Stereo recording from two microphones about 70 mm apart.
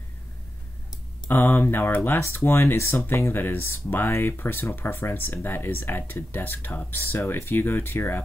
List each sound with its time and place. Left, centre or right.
1.3 s speech: left